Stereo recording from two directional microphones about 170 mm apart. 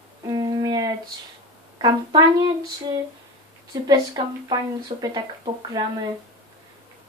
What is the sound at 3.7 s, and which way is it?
Speech, 25° right (ahead or behind).